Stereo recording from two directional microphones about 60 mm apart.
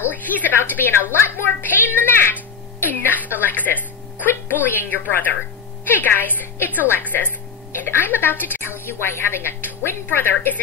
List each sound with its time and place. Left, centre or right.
0.1 s a woman's voice: left